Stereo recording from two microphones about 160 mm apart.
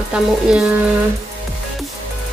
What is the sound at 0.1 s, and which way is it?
Speech, 5° right (ahead or behind).